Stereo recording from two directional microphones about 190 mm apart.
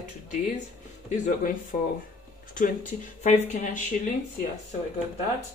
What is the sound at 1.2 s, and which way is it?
Speech, 45° left (ahead or behind).